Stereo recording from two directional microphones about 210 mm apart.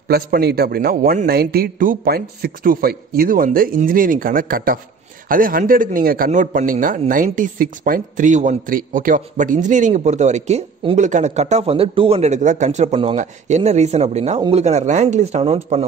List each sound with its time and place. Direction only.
0.1 s a man's voice: 50° right (ahead or behind); by 15.8 s 30° right (ahead or behind)